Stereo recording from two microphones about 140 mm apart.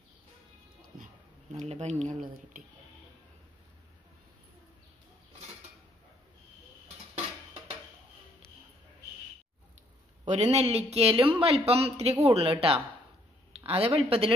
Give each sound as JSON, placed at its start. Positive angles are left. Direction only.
{"t": 0.9, "sound": "a sound", "side_deg": -75}
{"t": 1.5, "sound": "a man's voice", "side_deg": -55}
{"t": 10.2, "sound": "a man's voice", "side_deg": -55}